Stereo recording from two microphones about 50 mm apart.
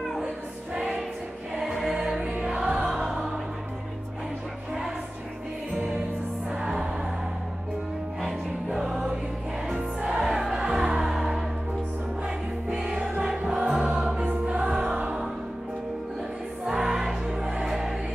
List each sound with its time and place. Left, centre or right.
0.7 s music: centre
2.0 s music: centre
6.5 s music: centre
8.6 s music: centre
12.6 s music: centre
16.6 s music: centre